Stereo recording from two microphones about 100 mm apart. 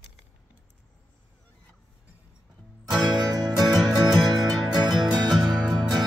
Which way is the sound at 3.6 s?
5° right (ahead or behind).